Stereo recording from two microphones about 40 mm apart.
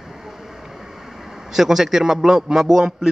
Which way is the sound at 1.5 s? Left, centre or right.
Centre.